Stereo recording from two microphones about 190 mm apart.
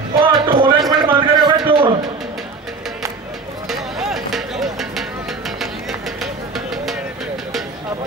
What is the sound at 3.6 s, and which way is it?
Music, centre (ahead or behind).